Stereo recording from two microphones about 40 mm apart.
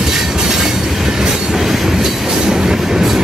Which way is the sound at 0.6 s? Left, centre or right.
Centre.